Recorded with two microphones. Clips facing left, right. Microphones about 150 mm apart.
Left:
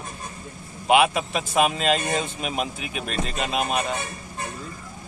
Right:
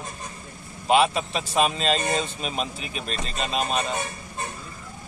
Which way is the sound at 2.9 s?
55° left (ahead or behind).